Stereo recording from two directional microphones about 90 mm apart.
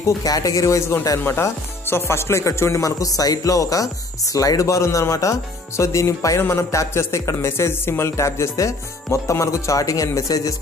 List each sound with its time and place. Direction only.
0.2 s speech: 40° left (ahead or behind)